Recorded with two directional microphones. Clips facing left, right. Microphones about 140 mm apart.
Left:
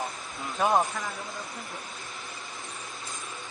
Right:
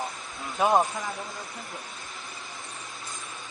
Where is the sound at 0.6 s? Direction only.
20° right (ahead or behind).